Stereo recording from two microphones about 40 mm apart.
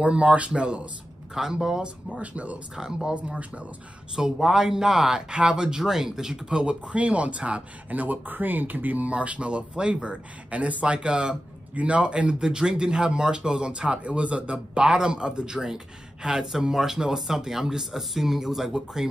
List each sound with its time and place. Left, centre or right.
0.0 s speech: right
1.3 s speech: centre
2.2 s speech: right
2.7 s speech: centre
3.3 s speech: right
4.1 s speech: centre